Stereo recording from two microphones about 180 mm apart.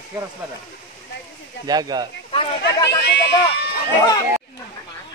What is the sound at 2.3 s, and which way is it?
Speech, 25° left (ahead or behind).